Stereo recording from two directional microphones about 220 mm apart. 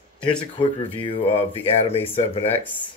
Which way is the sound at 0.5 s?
20° left (ahead or behind).